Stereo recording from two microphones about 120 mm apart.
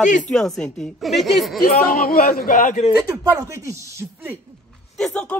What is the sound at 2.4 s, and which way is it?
Speech, 90° left.